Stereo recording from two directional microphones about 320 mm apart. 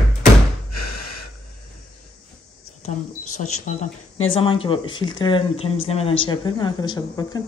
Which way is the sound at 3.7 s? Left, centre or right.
Left.